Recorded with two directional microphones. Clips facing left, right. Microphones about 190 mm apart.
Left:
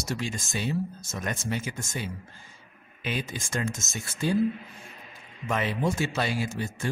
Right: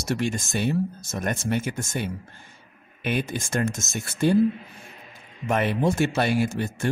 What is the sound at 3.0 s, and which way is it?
Speech, 60° right (ahead or behind).